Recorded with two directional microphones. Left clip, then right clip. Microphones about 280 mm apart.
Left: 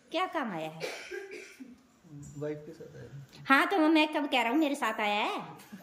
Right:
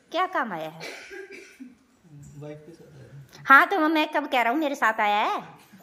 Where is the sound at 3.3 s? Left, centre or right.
Centre.